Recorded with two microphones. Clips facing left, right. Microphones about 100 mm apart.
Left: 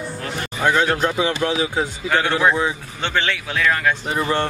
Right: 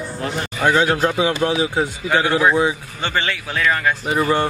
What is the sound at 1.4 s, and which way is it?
Speech, 25° right (ahead or behind).